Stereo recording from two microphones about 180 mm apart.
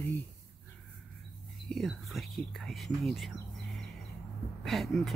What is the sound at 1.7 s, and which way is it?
Speech, centre (ahead or behind).